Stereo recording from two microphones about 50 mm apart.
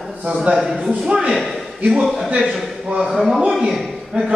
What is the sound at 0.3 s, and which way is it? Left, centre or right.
Speech, centre.